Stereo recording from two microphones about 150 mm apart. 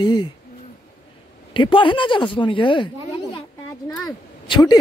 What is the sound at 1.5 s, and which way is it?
Speech, 35° left (ahead or behind).